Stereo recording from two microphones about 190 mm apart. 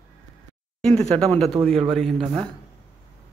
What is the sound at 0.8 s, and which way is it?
Speech, 5° left (ahead or behind).